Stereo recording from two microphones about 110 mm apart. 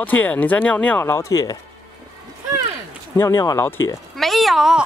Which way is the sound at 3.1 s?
25° left (ahead or behind).